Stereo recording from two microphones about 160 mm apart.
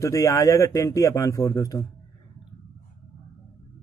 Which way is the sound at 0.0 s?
20° left (ahead or behind).